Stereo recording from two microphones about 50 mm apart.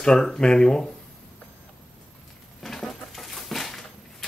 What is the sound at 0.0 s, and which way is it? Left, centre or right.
Speech, centre.